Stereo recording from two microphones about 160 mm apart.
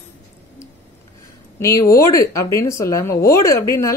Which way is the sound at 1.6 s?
20° left (ahead or behind).